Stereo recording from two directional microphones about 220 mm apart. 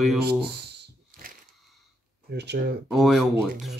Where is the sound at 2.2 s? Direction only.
50° right (ahead or behind).